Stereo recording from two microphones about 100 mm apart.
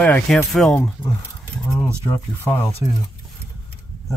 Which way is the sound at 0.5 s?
Centre (ahead or behind).